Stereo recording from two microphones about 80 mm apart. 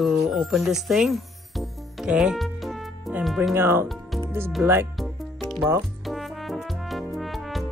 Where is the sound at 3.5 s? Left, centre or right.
Right.